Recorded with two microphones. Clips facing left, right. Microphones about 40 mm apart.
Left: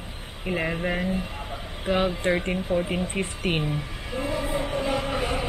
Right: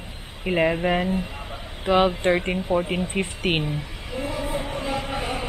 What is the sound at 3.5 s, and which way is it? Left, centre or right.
Speech, right.